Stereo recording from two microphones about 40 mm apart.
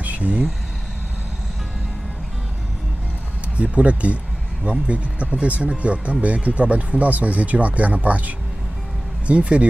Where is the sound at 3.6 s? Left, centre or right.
Right.